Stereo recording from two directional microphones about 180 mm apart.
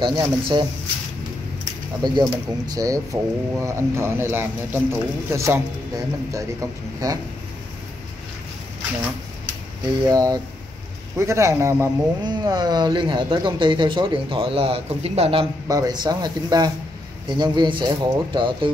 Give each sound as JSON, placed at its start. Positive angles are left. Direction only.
{"t": 0.0, "sound": "speech", "side_deg": -25}
{"t": 10.0, "sound": "speech", "side_deg": -20}
{"t": 15.7, "sound": "speech", "side_deg": -20}